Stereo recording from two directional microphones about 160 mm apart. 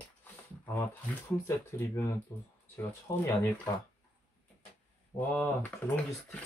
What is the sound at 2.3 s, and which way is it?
Speech, 15° left (ahead or behind).